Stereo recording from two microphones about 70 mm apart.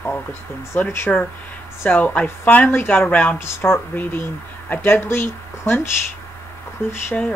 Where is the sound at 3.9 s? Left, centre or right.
Left.